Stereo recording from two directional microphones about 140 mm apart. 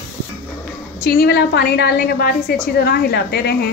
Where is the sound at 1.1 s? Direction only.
90° left.